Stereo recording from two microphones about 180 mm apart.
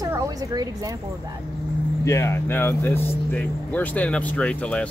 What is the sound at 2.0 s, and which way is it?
Speech, 15° left (ahead or behind).